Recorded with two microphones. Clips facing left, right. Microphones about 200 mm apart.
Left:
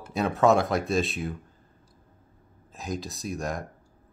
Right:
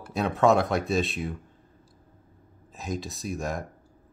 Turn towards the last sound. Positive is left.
turn(degrees=0)  # may be behind; listen again after turning